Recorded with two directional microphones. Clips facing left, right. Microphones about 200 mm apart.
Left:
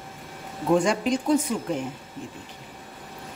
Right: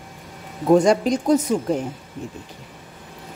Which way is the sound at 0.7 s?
40° right (ahead or behind).